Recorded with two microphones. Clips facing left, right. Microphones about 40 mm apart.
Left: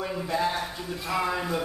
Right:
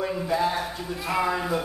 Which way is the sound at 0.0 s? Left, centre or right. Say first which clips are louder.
Right 3 dB; centre.